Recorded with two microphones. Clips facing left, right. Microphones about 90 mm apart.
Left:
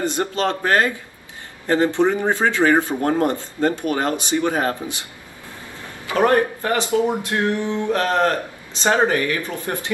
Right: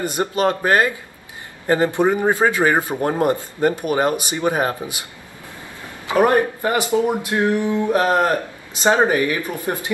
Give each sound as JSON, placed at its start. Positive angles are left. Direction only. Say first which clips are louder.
{"t": 0.0, "sound": "speech", "louder": "right 2 dB", "side_deg": -15}
{"t": 6.0, "sound": "speech", "louder": "right 1 dB", "side_deg": -15}